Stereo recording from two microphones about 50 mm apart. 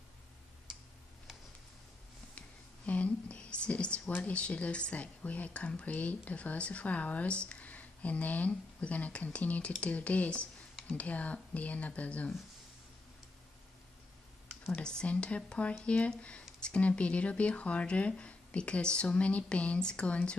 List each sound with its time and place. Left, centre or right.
2.3 s a sound: left
4.1 s a woman's voice: left
14.8 s a woman's voice: centre